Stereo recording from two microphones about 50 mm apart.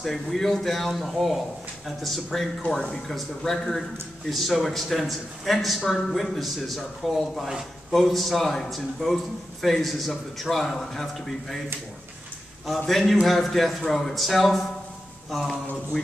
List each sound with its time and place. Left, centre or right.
0.0 s speech: centre
12.6 s speech: centre